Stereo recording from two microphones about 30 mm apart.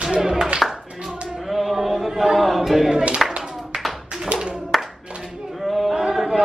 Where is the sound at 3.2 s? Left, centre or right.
Centre.